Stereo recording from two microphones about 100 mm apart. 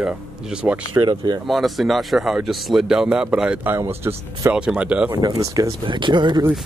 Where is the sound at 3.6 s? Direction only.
25° right (ahead or behind).